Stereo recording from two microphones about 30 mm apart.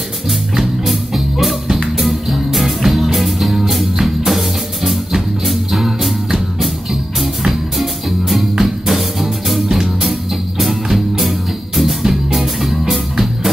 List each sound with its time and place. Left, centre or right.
0.8 s music: centre